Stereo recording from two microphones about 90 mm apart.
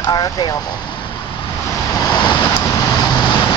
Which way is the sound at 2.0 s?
50° left (ahead or behind).